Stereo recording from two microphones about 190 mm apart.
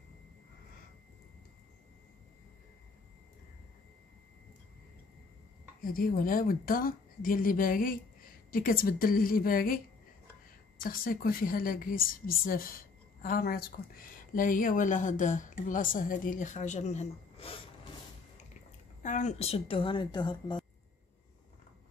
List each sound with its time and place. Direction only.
5.8 s speech: 50° left (ahead or behind)
10.8 s speech: 50° left (ahead or behind); by 17.6 s 35° left (ahead or behind)
19.0 s a woman's voice: 40° left (ahead or behind); by 20.5 s 20° left (ahead or behind)